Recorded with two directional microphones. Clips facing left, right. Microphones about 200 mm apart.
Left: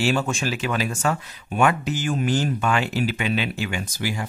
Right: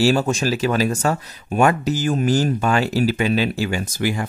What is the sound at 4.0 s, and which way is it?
Speech, 55° right (ahead or behind).